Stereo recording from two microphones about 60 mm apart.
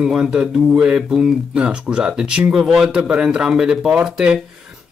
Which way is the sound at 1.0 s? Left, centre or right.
Centre.